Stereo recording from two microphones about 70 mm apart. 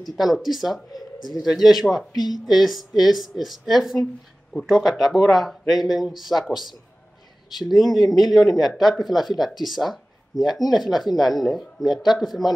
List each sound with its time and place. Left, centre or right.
0.0 s a man's voice: centre
2.1 s a woman's voice: left
2.4 s speech: centre